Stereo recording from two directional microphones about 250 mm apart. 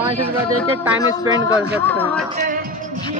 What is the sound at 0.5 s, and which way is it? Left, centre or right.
Speech, right.